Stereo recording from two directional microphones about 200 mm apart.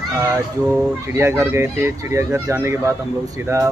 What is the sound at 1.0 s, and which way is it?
Speech, 15° right (ahead or behind).